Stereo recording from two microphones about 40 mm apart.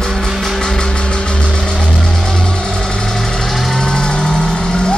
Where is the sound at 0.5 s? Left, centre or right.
Centre.